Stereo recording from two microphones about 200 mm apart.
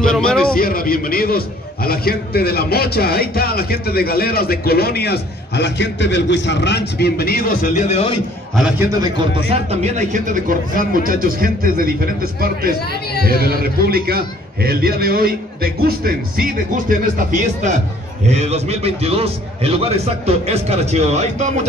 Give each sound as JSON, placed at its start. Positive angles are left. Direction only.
{"t": 0.1, "sound": "a man's voice", "side_deg": 5}
{"t": 0.6, "sound": "a man's voice", "side_deg": 45}
{"t": 8.5, "sound": "a man's voice", "side_deg": -5}
{"t": 9.7, "sound": "a man's voice", "side_deg": -35}
{"t": 12.8, "sound": "a man's voice", "side_deg": 55}
{"t": 13.3, "sound": "a man's voice", "side_deg": -50}